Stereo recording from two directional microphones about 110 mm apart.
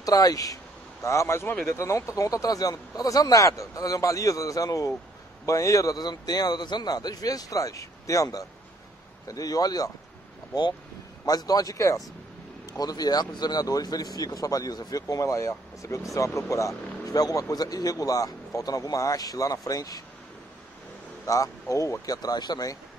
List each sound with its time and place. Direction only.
0.0 s a man's voice: 35° left (ahead or behind)
11.2 s speech: 35° left (ahead or behind)
21.3 s speech: 30° left (ahead or behind)